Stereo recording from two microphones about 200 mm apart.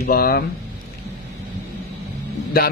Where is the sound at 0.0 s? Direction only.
50° left (ahead or behind).